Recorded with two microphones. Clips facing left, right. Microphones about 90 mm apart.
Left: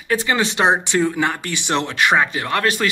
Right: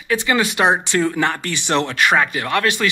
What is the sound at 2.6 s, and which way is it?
Speech, 40° left (ahead or behind).